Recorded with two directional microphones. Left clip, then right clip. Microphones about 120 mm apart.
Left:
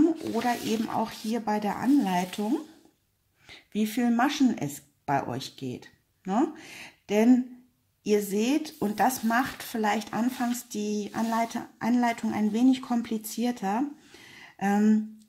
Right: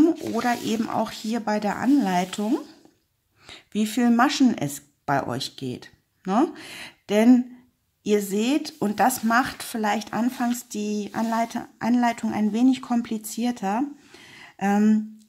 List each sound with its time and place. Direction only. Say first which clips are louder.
0.3 s speech: right 3 dB; 35° right (ahead or behind)